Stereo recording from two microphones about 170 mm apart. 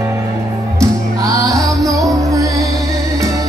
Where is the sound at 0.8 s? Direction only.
20° right (ahead or behind).